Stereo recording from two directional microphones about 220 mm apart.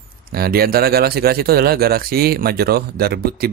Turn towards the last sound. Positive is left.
turn(degrees=-45)  # may be behind; listen again after turning